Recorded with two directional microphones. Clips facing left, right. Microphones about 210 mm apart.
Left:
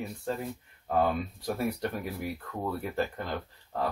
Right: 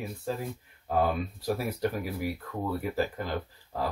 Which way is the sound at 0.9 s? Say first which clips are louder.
Even; 5° right (ahead or behind).